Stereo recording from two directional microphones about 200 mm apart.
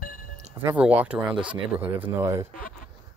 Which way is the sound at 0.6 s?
10° right (ahead or behind).